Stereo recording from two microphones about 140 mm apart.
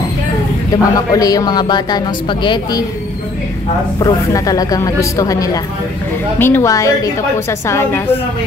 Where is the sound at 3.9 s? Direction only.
25° left (ahead or behind).